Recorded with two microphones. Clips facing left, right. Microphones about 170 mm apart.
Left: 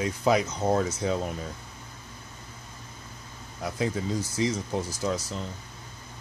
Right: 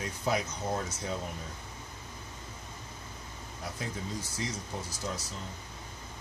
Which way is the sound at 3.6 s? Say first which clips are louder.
Left 8 dB; 90° left.